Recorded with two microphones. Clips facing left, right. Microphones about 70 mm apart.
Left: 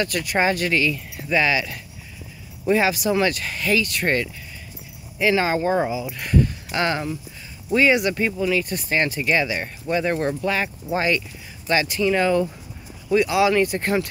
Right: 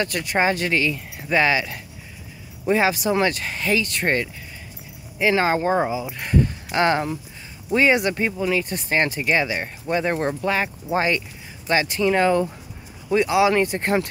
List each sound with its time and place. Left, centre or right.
0.0 s speech: right
5.3 s speech: right